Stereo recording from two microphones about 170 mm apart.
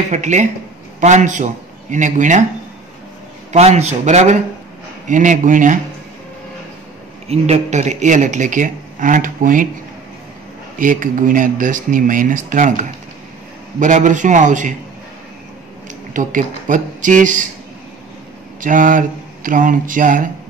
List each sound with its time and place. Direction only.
0.1 s a man's voice: 45° right (ahead or behind)
3.5 s speech: 40° right (ahead or behind)
7.2 s speech: 40° right (ahead or behind)
10.8 s speech: 50° right (ahead or behind)
16.1 s speech: 50° right (ahead or behind)
18.6 s speech: 50° right (ahead or behind)